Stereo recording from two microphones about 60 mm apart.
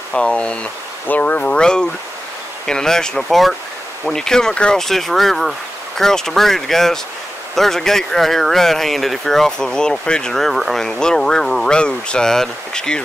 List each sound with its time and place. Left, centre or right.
0.1 s speech: centre
1.0 s speech: left; by 13.0 s centre